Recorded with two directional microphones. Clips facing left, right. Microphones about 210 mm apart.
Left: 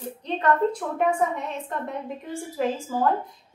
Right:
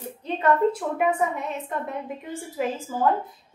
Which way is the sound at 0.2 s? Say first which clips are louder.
Right 1 dB; 5° right (ahead or behind).